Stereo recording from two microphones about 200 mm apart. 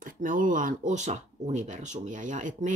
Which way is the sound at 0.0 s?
40° right (ahead or behind).